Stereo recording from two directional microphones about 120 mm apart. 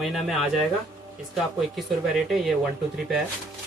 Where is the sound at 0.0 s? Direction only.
Centre (ahead or behind).